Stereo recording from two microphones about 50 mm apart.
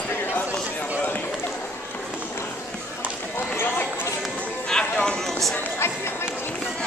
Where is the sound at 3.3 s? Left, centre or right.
Left.